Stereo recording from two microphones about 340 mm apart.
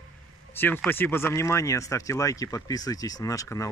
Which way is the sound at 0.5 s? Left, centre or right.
Centre.